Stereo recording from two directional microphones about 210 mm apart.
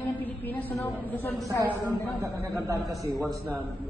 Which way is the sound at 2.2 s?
10° right (ahead or behind).